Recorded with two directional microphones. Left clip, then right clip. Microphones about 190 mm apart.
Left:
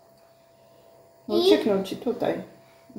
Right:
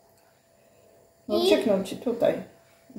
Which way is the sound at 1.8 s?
15° left (ahead or behind).